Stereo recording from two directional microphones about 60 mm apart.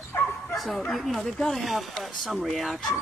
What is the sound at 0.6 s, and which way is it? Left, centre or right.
Speech, centre.